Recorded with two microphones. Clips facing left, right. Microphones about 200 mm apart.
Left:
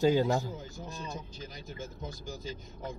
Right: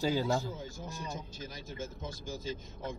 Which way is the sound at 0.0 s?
20° left (ahead or behind).